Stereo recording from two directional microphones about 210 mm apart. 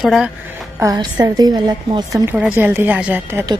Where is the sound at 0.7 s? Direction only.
15° right (ahead or behind).